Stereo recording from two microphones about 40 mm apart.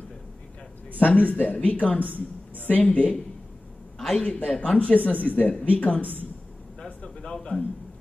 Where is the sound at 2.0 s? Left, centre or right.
Right.